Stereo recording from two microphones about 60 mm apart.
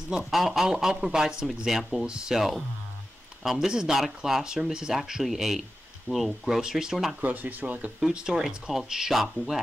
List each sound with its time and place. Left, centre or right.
0.1 s speech: centre
7.2 s speech: right
8.0 s speech: centre